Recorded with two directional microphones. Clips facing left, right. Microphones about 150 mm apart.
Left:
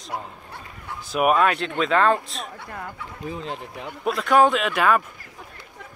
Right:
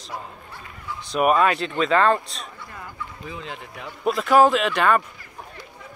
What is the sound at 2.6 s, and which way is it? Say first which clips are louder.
Speech: left 2 dB; 60° left (ahead or behind).